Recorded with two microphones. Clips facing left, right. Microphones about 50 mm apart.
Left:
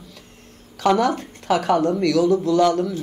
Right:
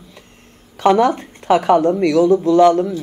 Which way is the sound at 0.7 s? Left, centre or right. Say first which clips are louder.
Right 5 dB; right.